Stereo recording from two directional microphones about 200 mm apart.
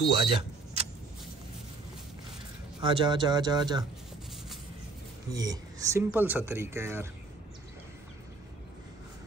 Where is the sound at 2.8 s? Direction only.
25° right (ahead or behind).